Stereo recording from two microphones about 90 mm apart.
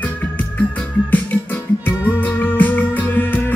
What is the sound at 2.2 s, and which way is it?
Music, 20° left (ahead or behind).